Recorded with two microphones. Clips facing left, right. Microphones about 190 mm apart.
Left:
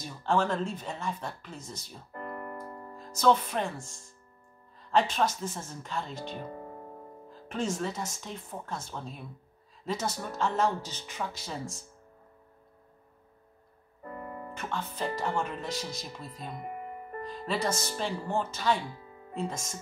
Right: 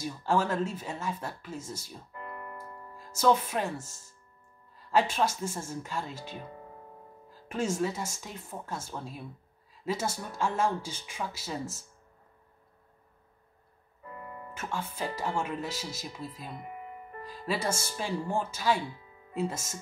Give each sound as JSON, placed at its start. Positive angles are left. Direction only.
{"t": 0.0, "sound": "speech", "side_deg": -10}
{"t": 2.1, "sound": "piano", "side_deg": 45}
{"t": 3.0, "sound": "speech", "side_deg": -10}
{"t": 14.0, "sound": "music", "side_deg": 40}
{"t": 14.5, "sound": "speech", "side_deg": -10}
{"t": 16.5, "sound": "music", "side_deg": 45}
{"t": 17.2, "sound": "speech", "side_deg": -5}